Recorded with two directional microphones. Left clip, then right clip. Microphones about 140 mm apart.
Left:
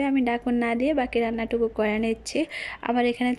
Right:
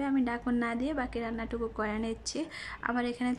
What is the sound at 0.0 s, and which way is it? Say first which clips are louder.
Speech: left 7 dB; 15° left (ahead or behind).